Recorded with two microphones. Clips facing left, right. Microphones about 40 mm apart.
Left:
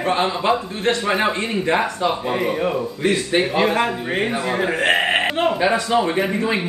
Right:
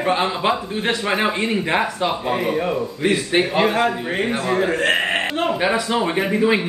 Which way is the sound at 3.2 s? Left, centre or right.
Centre.